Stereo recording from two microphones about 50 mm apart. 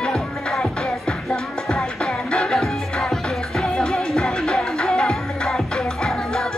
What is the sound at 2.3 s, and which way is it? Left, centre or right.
Music, centre.